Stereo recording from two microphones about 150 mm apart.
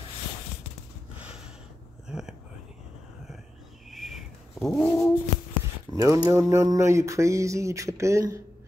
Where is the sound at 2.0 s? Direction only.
5° right (ahead or behind).